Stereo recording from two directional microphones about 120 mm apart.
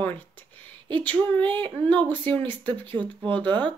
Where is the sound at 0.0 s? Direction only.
15° left (ahead or behind).